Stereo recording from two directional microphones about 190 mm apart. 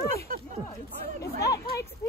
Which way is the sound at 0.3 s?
50° right (ahead or behind).